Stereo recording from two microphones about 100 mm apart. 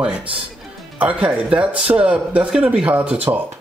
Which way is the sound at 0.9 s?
15° right (ahead or behind).